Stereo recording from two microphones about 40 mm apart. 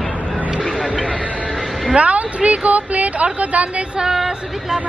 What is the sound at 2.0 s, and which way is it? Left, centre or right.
A woman's voice, right.